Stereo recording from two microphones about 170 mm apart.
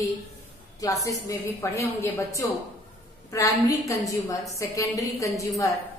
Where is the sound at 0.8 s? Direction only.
20° left (ahead or behind).